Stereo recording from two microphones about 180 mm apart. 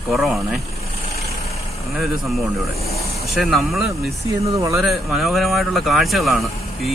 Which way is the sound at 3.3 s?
Centre (ahead or behind).